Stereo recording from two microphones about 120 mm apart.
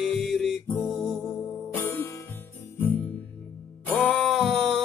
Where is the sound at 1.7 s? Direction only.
15° left (ahead or behind).